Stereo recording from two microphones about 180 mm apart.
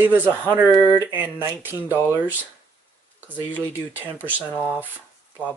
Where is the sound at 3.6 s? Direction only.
10° right (ahead or behind).